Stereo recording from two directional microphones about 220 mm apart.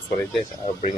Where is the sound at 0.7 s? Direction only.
30° left (ahead or behind).